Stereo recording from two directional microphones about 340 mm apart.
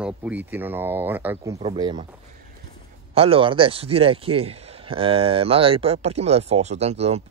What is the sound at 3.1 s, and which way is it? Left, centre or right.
Speech, centre.